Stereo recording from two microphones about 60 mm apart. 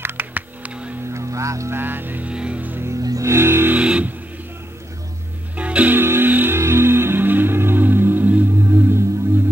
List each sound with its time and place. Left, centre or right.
0.0 s computer keyboard: right
1.1 s music: right
1.7 s vehicle: right
2.2 s music: centre
3.0 s music: right
3.3 s music: right
3.7 s music: right
5.6 s music: right
5.9 s music: right
6.6 s music: right
8.6 s music: right